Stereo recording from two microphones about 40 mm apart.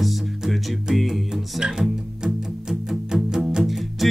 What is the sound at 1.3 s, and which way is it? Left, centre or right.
Music, centre.